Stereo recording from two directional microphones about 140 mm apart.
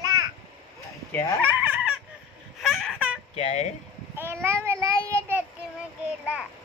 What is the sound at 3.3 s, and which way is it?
Speech, 55° left (ahead or behind).